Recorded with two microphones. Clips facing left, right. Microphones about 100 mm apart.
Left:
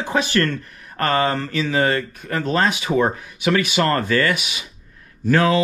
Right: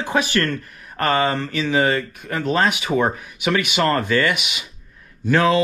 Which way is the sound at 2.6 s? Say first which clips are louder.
Even; 35° left (ahead or behind).